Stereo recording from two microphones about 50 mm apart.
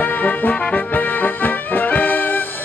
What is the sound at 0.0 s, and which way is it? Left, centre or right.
Music, left.